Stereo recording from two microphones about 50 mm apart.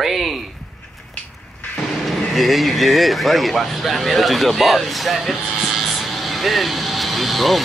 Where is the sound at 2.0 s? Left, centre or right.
Centre.